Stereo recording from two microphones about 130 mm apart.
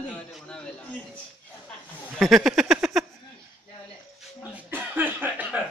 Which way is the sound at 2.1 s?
Centre (ahead or behind).